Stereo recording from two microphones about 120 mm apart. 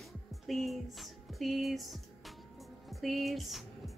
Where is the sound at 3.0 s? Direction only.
Centre (ahead or behind).